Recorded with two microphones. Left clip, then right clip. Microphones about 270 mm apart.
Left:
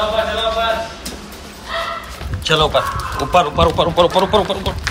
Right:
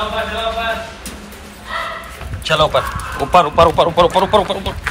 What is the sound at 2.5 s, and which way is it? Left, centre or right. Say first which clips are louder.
Speech: right 1 dB; centre.